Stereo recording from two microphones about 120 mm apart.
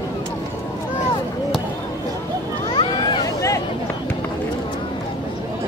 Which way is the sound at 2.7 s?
40° left (ahead or behind).